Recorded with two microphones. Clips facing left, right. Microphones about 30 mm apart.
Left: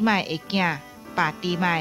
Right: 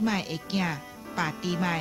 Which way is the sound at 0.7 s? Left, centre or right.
Centre.